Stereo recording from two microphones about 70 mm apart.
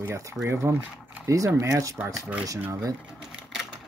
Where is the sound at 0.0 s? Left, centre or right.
Right.